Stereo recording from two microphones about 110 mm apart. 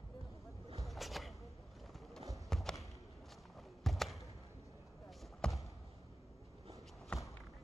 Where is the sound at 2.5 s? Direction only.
5° left (ahead or behind).